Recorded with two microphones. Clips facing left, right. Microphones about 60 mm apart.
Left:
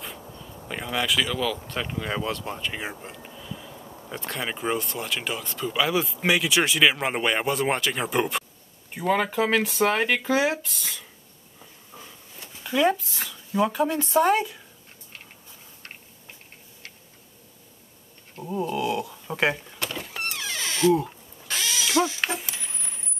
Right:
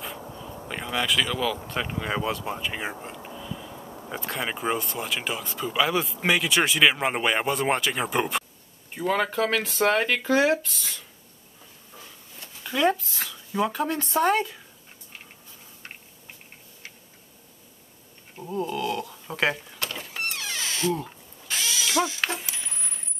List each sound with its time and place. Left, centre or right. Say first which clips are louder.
0.0 s speech: right 3 dB; centre
9.8 s speech: even; centre
12.6 s speech: left 1 dB; centre
18.4 s speech: left 1 dB; centre
19.3 s a sound: left 1 dB; centre
20.3 s cat: left 2 dB; left
21.5 s mechanisms: left 1 dB; left
22.2 s a sound: even; centre